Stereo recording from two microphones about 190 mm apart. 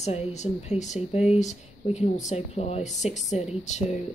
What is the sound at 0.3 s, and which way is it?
Speech, 35° left (ahead or behind).